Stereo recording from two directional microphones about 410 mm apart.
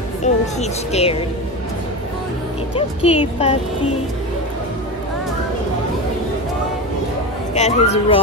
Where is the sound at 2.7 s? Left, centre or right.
Centre.